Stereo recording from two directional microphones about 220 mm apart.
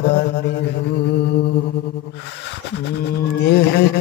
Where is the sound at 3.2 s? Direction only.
50° left (ahead or behind).